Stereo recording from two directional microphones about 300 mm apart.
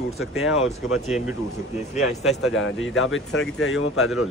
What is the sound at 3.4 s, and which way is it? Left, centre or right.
Speech, left.